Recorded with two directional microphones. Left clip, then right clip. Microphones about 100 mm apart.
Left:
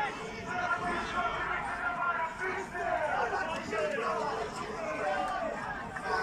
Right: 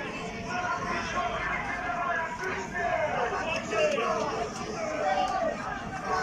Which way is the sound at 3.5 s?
20° right (ahead or behind).